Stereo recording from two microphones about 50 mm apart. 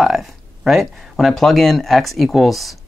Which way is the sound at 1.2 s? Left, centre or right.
Centre.